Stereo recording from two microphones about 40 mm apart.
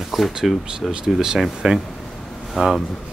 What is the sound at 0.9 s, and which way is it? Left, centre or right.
Speech, centre.